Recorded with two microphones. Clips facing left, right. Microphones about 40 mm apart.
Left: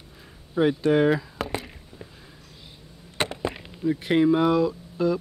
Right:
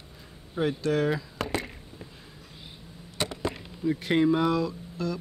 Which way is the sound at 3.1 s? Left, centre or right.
Left.